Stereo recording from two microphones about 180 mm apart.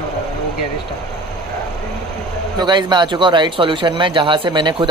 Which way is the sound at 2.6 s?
25° right (ahead or behind).